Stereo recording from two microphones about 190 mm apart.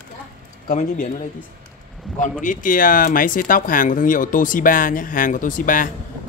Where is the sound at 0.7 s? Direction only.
40° left (ahead or behind).